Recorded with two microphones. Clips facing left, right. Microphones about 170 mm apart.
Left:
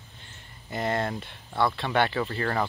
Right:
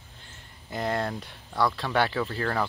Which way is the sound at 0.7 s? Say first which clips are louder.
Left 1 dB; centre (ahead or behind).